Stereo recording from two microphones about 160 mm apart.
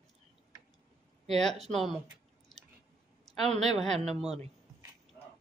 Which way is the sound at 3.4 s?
Centre (ahead or behind).